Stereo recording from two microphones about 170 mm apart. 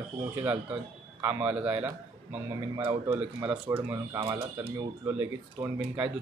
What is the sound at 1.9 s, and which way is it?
A man's voice, 20° right (ahead or behind).